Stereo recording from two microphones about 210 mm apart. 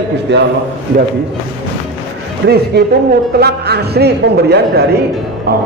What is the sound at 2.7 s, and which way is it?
A man's voice, 50° right (ahead or behind).